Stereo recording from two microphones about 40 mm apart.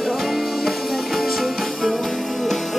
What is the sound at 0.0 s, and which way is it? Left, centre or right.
Music, centre.